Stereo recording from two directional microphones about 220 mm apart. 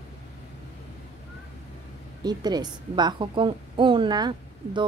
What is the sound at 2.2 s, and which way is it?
A woman's voice, 20° right (ahead or behind).